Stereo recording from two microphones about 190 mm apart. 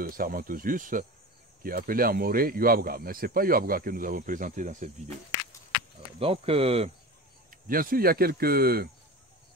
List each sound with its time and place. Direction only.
0.0 s speech: 50° right (ahead or behind)
6.1 s speech: 30° right (ahead or behind)
7.6 s speech: 50° right (ahead or behind)